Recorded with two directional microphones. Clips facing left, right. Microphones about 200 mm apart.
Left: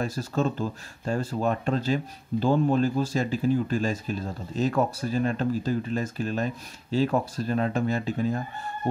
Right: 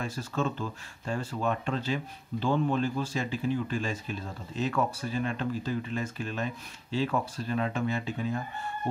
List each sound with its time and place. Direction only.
0.0 s speech: 40° left (ahead or behind)